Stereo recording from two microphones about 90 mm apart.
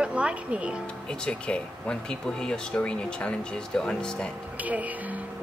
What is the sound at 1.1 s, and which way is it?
Speech, 10° left (ahead or behind).